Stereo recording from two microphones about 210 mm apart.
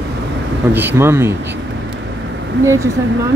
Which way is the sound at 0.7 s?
10° right (ahead or behind).